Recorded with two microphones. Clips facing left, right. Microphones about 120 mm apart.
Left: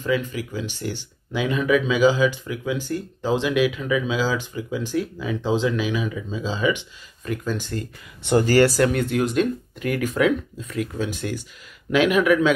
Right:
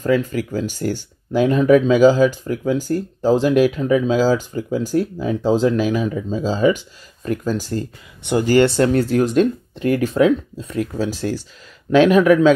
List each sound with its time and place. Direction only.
0.0 s speech: 40° right (ahead or behind)
8.2 s speech: 15° right (ahead or behind); by 12.5 s 40° right (ahead or behind)